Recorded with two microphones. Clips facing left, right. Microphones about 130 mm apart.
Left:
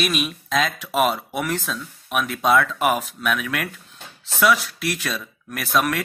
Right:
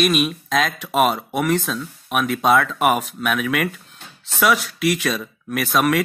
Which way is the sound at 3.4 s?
55° right (ahead or behind).